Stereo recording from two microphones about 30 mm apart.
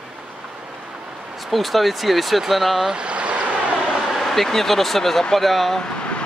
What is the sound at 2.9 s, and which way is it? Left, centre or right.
Vehicle, right.